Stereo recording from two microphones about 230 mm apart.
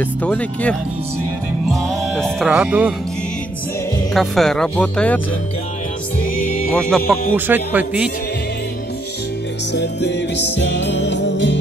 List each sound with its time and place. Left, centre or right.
0.0 s speech: centre
1.7 s music: centre
4.1 s speech: centre
6.7 s speech: centre
7.3 s speech: centre
9.8 s music: left